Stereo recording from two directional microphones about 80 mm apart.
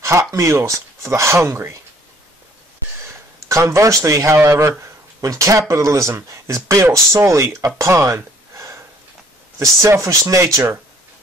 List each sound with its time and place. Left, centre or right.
0.0 s speech: right
3.4 s speech: right